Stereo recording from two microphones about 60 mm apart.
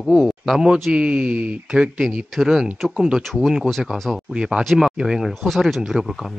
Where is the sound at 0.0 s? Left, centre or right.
Centre.